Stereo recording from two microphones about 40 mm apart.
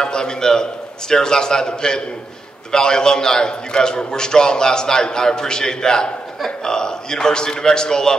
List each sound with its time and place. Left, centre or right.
0.0 s a man's voice: centre